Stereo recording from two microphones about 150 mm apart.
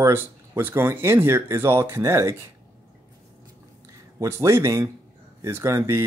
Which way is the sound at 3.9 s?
20° right (ahead or behind).